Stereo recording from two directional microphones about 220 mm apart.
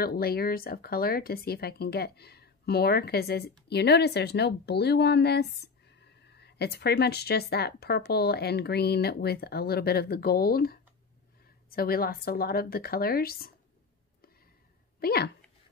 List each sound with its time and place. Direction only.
0.0 s speech: 45° left (ahead or behind)
15.0 s speech: 45° left (ahead or behind)